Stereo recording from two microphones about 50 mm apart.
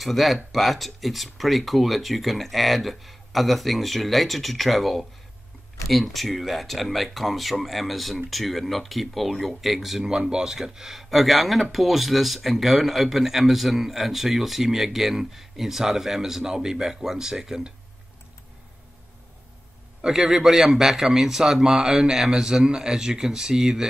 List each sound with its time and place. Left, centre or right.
0.0 s speech: centre
20.0 s a man's voice: centre